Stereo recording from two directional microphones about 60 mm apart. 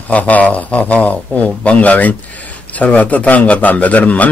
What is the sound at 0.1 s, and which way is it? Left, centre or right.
Speech, left.